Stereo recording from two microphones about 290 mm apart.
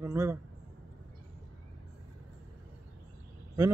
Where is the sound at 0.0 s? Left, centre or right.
Centre.